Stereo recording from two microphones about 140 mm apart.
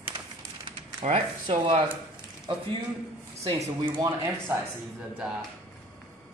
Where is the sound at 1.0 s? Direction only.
50° right (ahead or behind).